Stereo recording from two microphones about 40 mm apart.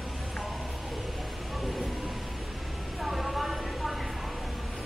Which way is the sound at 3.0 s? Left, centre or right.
Centre.